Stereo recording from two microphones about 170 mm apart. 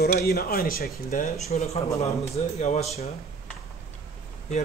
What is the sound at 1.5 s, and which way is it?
Speech, 40° left (ahead or behind).